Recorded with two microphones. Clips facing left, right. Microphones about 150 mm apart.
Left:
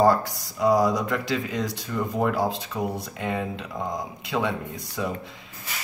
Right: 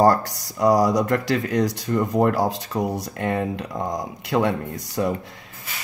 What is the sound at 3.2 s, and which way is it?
Speech, 55° right (ahead or behind).